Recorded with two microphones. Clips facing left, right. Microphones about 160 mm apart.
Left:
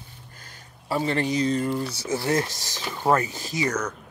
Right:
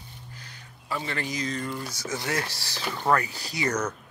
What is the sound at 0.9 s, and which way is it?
Speech, 30° left (ahead or behind).